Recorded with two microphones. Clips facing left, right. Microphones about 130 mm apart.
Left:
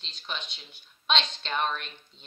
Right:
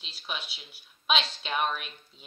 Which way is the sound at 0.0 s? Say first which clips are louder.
Even; 5° right (ahead or behind).